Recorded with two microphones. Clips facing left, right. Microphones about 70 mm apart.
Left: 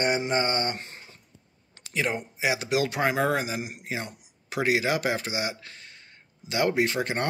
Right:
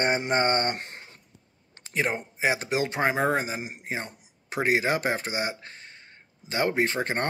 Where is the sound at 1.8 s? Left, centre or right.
Right.